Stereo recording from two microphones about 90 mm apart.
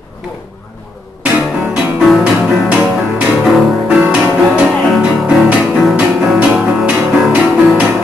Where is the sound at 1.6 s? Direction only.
15° right (ahead or behind).